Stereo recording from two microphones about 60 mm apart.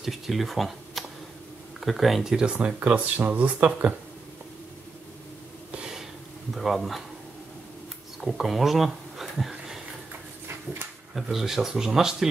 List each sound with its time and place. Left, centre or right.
0.0 s speech: centre
2.3 s speech: centre
5.7 s a sound: centre
6.5 s speech: centre
8.2 s speech: centre
11.1 s speech: centre